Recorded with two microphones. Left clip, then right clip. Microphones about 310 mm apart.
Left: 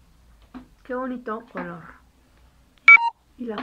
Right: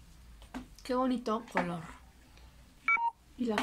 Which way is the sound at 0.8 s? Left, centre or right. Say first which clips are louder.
Left 3 dB; centre.